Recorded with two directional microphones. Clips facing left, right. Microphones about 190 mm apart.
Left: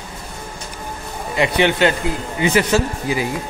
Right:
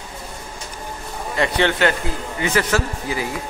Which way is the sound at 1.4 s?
15° left (ahead or behind).